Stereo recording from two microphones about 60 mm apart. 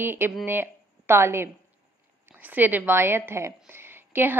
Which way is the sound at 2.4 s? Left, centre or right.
Right.